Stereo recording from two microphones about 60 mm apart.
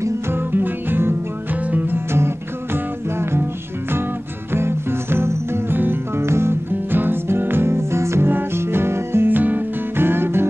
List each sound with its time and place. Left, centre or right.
0.3 s music: right
2.1 s music: right
4.5 s music: right
6.7 s music: right
8.3 s music: right